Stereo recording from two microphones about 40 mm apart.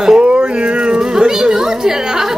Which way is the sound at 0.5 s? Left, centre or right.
Right.